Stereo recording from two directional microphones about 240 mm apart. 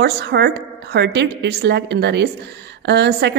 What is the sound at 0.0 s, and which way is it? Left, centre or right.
A woman's voice, right.